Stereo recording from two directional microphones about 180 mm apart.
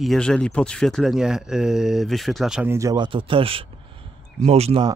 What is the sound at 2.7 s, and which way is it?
Speech, 20° right (ahead or behind).